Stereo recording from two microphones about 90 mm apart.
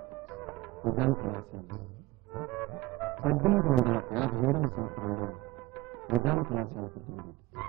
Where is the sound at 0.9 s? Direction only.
5° left (ahead or behind).